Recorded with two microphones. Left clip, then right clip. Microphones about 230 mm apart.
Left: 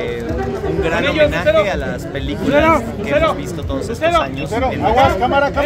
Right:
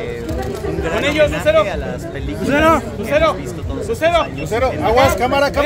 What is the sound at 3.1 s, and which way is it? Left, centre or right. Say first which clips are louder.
Speech: right 1 dB; right.